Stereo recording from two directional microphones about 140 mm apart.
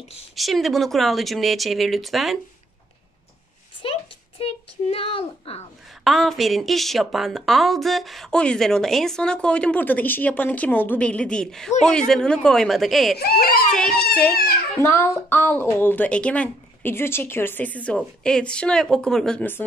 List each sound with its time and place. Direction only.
0.4 s a woman's voice: centre (ahead or behind)
3.8 s a sound: 40° left (ahead or behind)
4.4 s a woman's voice: 45° left (ahead or behind)
6.0 s a woman's voice: centre (ahead or behind)
13.2 s a child's voice: 90° left
13.7 s a woman's voice: 5° left (ahead or behind)
14.8 s speech: 20° left (ahead or behind)